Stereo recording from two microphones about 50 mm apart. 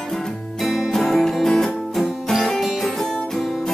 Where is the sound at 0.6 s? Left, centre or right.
Centre.